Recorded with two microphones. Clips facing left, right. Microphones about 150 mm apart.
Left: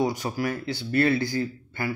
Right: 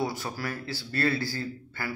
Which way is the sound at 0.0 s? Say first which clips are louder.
Left 6 dB; 20° left (ahead or behind).